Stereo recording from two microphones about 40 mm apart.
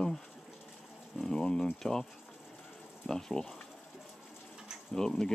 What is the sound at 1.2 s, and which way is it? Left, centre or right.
Speech, centre.